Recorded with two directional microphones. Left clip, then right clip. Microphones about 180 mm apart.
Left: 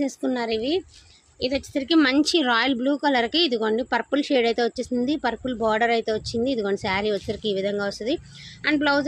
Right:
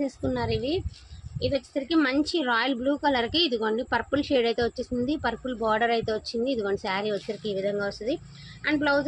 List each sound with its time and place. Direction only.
0.0 s a woman's voice: 40° left (ahead or behind)